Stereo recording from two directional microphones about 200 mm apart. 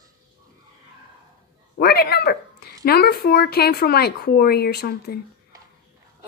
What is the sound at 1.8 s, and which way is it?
Speech, 50° left (ahead or behind).